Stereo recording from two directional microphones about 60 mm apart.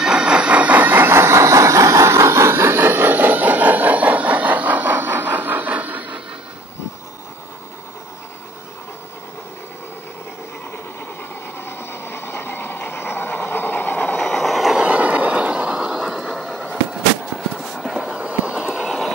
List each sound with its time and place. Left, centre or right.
0.0 s vehicle: centre
11.6 s vehicle: left
14.2 s train: centre
14.8 s vehicle: right; by 16.5 s centre
17.6 s a sound: centre
18.0 s train: right
18.9 s train: centre